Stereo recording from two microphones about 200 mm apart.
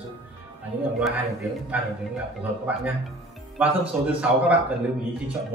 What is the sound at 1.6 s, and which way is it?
A man's voice, 5° right (ahead or behind).